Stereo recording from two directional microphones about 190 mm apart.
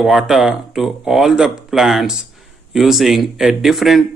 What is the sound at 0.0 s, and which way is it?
Speech, centre (ahead or behind).